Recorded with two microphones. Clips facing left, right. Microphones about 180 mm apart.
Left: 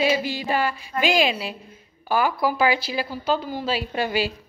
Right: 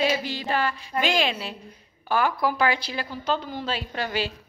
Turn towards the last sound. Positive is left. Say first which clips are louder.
# left 4 dB
turn(degrees=10)  # may be behind; listen again after turning